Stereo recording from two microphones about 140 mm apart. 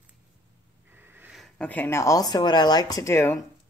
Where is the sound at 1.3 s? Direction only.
Centre (ahead or behind).